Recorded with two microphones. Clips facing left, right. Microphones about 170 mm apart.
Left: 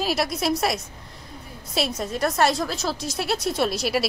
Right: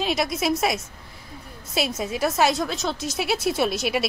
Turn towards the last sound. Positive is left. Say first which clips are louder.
# even
turn(degrees=0)  # may be behind; listen again after turning